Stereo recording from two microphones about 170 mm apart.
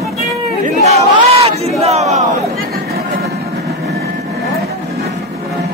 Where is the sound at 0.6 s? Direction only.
40° right (ahead or behind).